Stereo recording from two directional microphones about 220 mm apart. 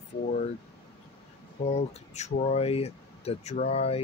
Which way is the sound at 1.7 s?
30° left (ahead or behind).